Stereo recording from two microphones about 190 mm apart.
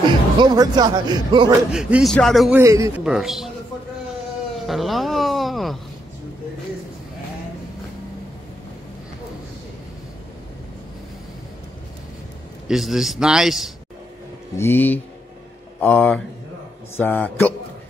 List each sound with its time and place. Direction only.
0.4 s speech: 20° right (ahead or behind)
1.7 s a man's voice: 5° right (ahead or behind)
2.5 s a man's voice: 15° right (ahead or behind)
3.0 s a man's voice: 5° right (ahead or behind)
4.6 s speech: centre (ahead or behind)
12.6 s a man's voice: centre (ahead or behind)
14.6 s a man's voice: 10° left (ahead or behind)